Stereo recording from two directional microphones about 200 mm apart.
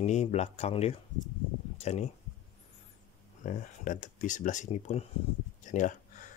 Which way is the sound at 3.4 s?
40° left (ahead or behind).